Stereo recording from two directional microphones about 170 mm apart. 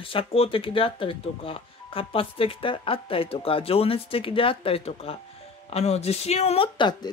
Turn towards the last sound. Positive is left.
turn(degrees=25)  # may be behind; listen again after turning